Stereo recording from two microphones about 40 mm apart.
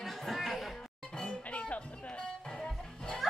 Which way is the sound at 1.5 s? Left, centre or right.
Left.